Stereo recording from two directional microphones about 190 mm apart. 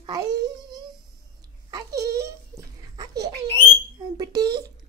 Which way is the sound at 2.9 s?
20° right (ahead or behind).